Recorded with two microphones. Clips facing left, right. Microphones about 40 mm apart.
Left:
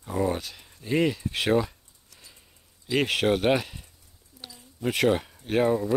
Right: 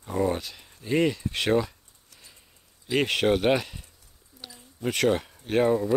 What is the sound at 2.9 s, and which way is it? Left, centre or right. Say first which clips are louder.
Speech: right 1 dB; centre.